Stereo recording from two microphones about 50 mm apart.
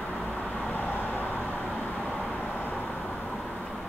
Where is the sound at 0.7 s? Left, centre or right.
Left.